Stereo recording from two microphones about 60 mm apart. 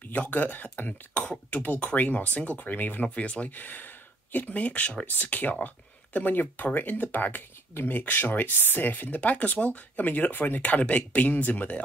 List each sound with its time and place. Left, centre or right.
0.0 s speech: left